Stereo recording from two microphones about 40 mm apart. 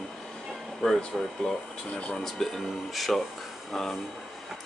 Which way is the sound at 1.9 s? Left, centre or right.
Left.